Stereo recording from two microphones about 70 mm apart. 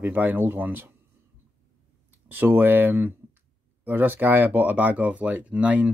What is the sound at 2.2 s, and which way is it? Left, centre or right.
Speech, right.